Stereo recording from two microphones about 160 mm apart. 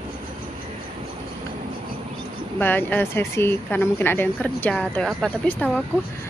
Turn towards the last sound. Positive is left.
turn(degrees=5)  # may be behind; listen again after turning